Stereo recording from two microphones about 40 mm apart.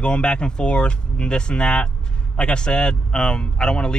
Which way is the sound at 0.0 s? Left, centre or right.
Left.